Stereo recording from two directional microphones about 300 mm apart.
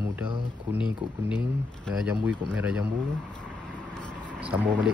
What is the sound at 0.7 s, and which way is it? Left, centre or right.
Speech, centre.